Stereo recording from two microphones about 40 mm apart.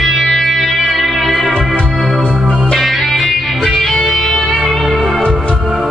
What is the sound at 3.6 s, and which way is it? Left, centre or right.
Music, centre.